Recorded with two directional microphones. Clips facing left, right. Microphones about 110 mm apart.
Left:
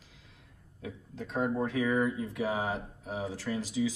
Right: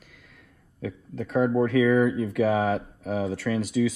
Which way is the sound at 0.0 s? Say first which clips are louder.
Right 5 dB; 55° right (ahead or behind).